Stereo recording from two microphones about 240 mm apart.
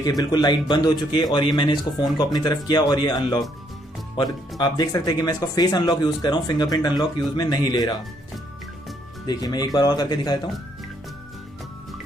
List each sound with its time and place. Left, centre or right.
0.2 s a man's voice: centre
9.2 s a man's voice: centre